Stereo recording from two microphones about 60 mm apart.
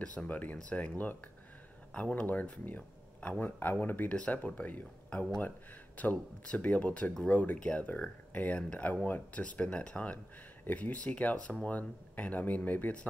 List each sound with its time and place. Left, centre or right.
0.0 s speech: centre
4.1 s speech: centre